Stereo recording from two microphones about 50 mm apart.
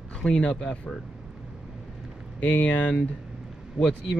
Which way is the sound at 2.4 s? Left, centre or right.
Left.